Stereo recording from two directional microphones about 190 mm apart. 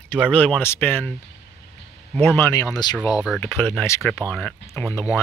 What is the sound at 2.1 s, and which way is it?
Speech, 10° left (ahead or behind).